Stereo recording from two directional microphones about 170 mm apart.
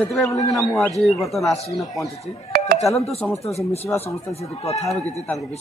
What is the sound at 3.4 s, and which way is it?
Speech, 40° left (ahead or behind).